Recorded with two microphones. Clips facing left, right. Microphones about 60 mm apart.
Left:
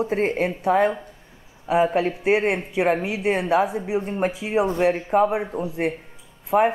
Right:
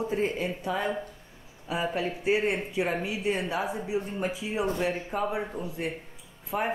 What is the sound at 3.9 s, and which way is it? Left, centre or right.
Speech, left.